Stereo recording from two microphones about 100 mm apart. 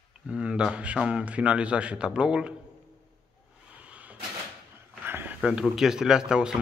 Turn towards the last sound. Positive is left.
turn(degrees=-5)  # may be behind; listen again after turning